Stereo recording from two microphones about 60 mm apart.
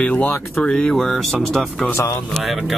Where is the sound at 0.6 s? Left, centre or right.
Centre.